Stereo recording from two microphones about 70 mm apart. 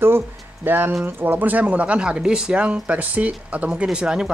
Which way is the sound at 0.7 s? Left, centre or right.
Right.